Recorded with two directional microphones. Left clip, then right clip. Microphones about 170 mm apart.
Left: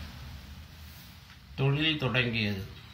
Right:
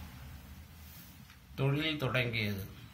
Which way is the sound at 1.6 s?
40° right (ahead or behind).